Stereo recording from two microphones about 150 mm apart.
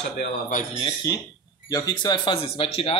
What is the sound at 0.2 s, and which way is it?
Speech, 65° left (ahead or behind).